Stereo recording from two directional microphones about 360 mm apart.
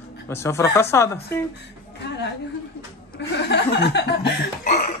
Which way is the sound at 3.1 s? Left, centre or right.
Left.